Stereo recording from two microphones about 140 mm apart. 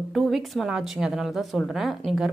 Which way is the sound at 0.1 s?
Centre (ahead or behind).